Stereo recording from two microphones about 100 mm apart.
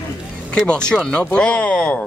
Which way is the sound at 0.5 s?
10° left (ahead or behind).